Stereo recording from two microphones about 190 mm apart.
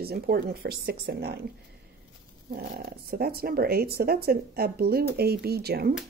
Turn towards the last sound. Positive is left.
turn(degrees=-55)  # may be behind; listen again after turning